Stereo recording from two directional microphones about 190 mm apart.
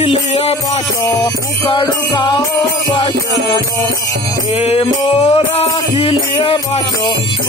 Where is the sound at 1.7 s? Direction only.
25° left (ahead or behind).